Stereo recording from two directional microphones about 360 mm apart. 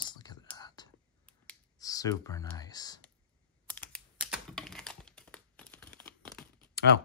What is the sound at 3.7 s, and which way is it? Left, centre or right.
Computer keyboard, centre.